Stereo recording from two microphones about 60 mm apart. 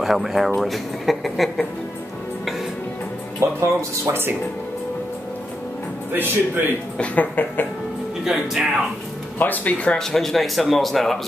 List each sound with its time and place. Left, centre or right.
0.0 s speech: centre
3.3 s speech: right
6.1 s speech: right
7.0 s speech: left
8.2 s speech: centre
9.4 s speech: left
9.9 s speech: centre